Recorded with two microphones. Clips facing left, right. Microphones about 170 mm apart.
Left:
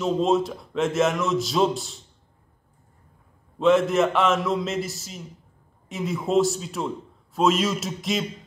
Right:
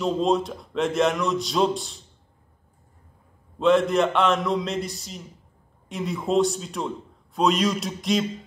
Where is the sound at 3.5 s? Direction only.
Centre (ahead or behind).